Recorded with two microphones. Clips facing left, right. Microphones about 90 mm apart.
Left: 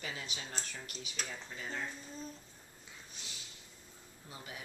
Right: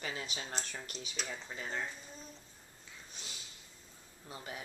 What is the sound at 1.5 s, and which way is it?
Speech, 30° right (ahead or behind).